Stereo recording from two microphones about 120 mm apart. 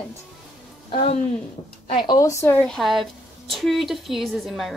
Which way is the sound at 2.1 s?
25° left (ahead or behind).